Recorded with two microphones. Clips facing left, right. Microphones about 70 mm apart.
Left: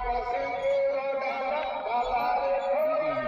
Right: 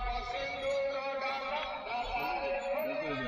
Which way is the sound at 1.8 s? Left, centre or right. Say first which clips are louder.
Left 9 dB; left.